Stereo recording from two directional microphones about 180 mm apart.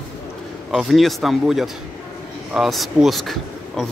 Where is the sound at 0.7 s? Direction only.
Centre (ahead or behind).